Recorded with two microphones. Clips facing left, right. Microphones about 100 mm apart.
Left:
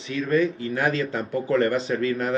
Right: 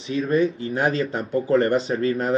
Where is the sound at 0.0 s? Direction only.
30° right (ahead or behind).